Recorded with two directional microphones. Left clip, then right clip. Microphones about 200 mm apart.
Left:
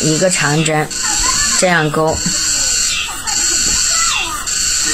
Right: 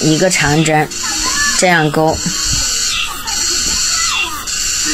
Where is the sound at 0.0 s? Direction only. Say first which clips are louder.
Right 2 dB; 15° right (ahead or behind).